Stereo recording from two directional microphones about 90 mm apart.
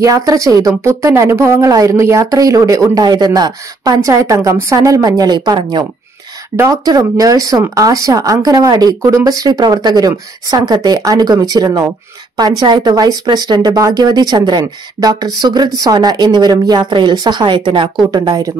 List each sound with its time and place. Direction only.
0.0 s speech: 40° right (ahead or behind)
4.0 s speech: 35° right (ahead or behind); by 5.9 s 55° right (ahead or behind)
6.5 s speech: 35° right (ahead or behind)